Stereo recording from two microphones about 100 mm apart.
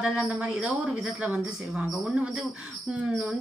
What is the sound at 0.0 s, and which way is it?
A woman's voice, 10° right (ahead or behind).